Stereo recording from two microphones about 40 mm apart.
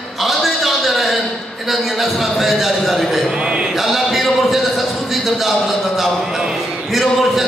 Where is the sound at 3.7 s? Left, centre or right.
Centre.